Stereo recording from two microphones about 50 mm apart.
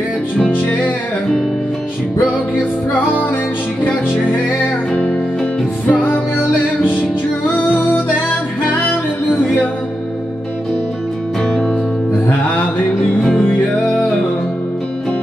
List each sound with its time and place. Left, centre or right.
4.9 s music: left
11.4 s music: centre